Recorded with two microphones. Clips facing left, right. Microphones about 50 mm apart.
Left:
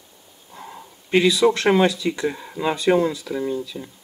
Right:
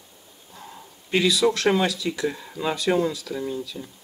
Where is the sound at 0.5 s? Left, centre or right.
Left.